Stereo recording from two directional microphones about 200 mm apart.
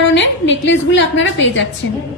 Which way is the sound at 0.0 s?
65° left (ahead or behind).